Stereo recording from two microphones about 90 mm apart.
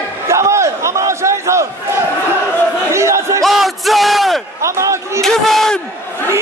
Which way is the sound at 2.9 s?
30° right (ahead or behind).